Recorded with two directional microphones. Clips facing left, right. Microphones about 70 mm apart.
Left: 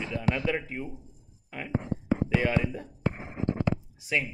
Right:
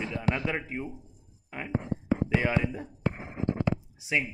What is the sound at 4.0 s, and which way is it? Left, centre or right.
Speech, centre.